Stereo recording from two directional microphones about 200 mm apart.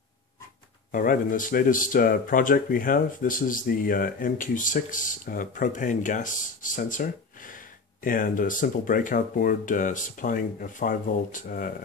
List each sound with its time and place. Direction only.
0.9 s speech: 45° left (ahead or behind)